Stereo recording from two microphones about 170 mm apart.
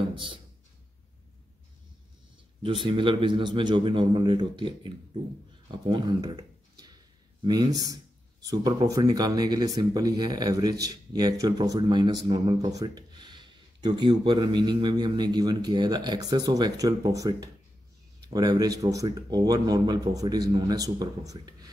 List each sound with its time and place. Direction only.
2.6 s speech: 30° right (ahead or behind)